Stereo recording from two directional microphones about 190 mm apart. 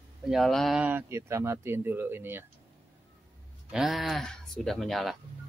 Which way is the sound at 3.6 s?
Centre (ahead or behind).